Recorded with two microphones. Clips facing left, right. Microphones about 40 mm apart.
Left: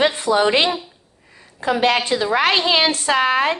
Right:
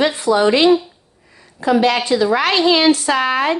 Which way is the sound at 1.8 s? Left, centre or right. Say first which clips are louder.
Right 3 dB; left.